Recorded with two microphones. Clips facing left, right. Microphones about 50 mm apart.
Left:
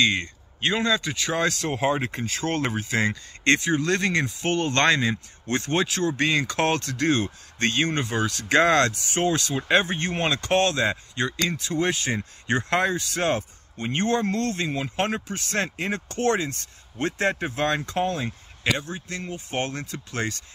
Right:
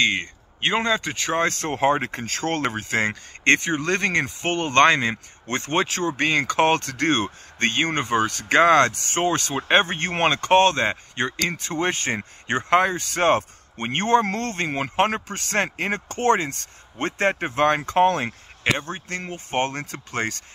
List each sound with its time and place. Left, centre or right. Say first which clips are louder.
0.0 s speech: right 1 dB; right
8.9 s speech: right 1 dB; right
18.6 s speech: right 2 dB; right